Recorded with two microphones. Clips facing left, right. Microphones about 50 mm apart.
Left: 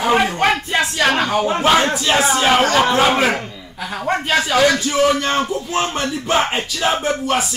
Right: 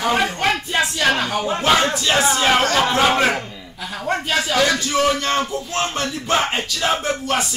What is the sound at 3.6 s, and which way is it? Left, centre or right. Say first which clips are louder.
Speech: left 3 dB; left.